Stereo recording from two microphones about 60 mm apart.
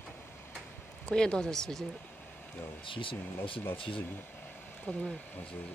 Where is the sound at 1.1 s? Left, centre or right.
Centre.